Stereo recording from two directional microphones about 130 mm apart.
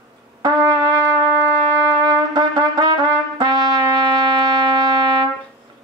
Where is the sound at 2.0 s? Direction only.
35° right (ahead or behind).